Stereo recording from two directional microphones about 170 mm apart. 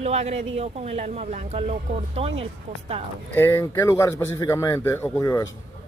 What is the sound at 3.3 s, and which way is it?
Speech, 15° left (ahead or behind).